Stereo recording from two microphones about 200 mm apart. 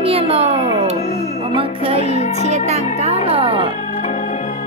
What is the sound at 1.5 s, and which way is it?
Music, 25° right (ahead or behind).